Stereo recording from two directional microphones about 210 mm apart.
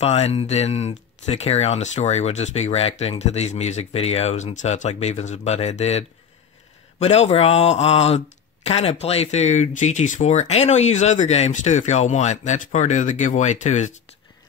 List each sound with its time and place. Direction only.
0.0 s speech: 30° left (ahead or behind)